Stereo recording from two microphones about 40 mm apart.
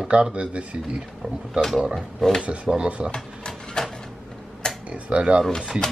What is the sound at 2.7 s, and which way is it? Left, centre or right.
Speech, right.